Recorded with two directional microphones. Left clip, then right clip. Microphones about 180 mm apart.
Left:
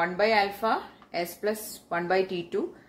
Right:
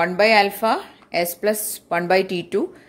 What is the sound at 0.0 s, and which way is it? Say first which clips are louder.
A woman's voice: right 8 dB; 50° right (ahead or behind).